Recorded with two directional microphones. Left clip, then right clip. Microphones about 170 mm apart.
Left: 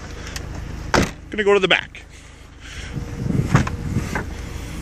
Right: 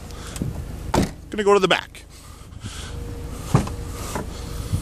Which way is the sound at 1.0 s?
15° right (ahead or behind).